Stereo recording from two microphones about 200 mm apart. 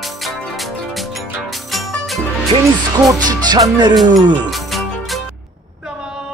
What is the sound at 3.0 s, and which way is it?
Music, 20° right (ahead or behind).